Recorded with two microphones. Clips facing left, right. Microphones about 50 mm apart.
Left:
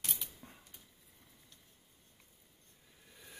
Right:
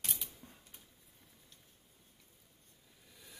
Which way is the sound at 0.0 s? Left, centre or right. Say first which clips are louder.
Even; centre.